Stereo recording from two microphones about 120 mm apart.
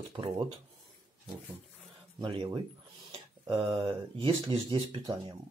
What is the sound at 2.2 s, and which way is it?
Speech, 45° right (ahead or behind).